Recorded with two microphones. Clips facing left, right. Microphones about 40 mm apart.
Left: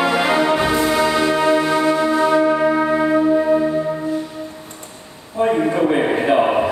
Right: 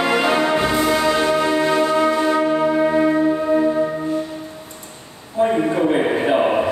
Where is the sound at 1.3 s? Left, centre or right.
Left.